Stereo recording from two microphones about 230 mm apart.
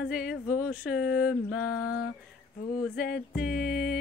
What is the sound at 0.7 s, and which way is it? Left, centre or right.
Speech, centre.